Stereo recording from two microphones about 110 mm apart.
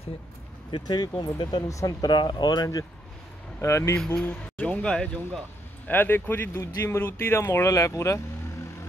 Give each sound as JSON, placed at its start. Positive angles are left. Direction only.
{"t": 0.7, "sound": "speech", "side_deg": 40}
{"t": 3.6, "sound": "speech", "side_deg": 25}
{"t": 3.9, "sound": "speech", "side_deg": 10}